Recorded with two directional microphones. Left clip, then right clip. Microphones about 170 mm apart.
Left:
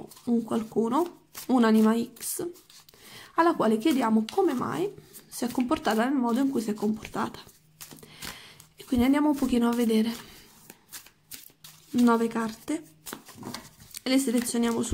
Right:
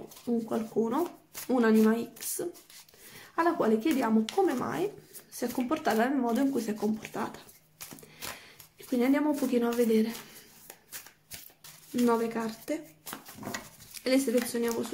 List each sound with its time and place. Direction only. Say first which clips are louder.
0.3 s speech: left 3 dB; 30° left (ahead or behind)
8.7 s speech: left 2 dB; 25° left (ahead or behind)
12.1 s a sound: left 2 dB; 30° left (ahead or behind)
14.0 s speech: even; 30° left (ahead or behind)